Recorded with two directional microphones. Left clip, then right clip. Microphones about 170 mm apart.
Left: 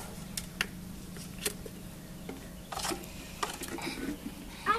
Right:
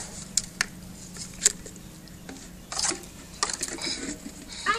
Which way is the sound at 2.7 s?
15° right (ahead or behind).